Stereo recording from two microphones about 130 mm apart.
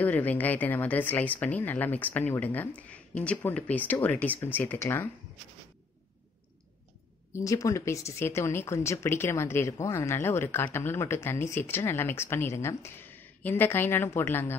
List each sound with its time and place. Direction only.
0.0 s speech: 15° left (ahead or behind)
7.3 s speech: 25° left (ahead or behind)